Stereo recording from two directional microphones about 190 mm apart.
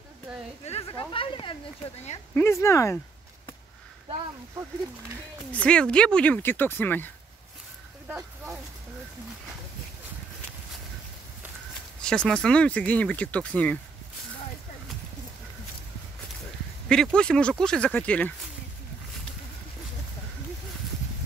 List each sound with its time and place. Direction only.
0.3 s a sound: 5° right (ahead or behind)
0.7 s a sound: 30° left (ahead or behind)
2.3 s speech: 15° left (ahead or behind)
5.5 s speech: 5° left (ahead or behind)
12.0 s speech: 5° left (ahead or behind)
16.9 s speech: 5° left (ahead or behind)